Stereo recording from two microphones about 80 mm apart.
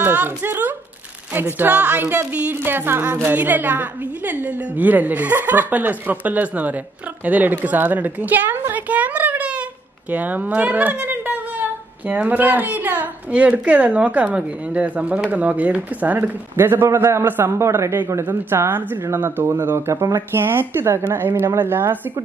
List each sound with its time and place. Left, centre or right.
0.0 s a woman's voice: right